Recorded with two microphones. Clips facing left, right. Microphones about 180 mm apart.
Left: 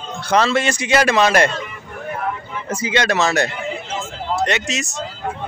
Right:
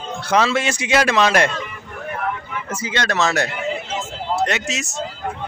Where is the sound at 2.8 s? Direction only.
15° left (ahead or behind).